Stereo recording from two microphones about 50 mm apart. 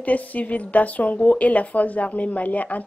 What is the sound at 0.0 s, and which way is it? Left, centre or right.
A woman's voice, left.